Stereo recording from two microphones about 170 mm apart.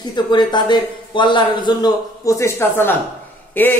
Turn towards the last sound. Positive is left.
turn(degrees=10)  # may be behind; listen again after turning